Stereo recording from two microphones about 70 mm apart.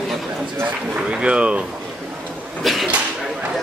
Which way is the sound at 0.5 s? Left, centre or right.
Right.